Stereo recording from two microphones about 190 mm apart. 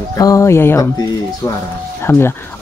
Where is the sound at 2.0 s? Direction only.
10° left (ahead or behind).